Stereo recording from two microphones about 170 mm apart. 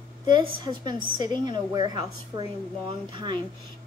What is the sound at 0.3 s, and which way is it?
Speech, 25° right (ahead or behind).